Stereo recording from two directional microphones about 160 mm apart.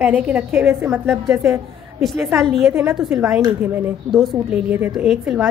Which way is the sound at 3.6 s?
10° right (ahead or behind).